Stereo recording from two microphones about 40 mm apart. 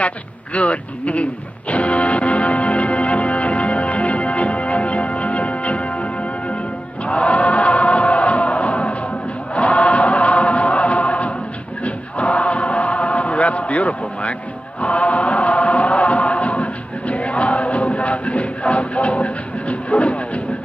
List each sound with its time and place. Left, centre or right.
0.0 s a sound: left
7.1 s music: left
11.8 s chant: left